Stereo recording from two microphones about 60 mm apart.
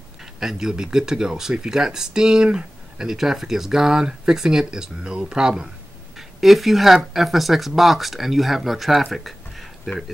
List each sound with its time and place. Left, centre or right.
0.2 s speech: centre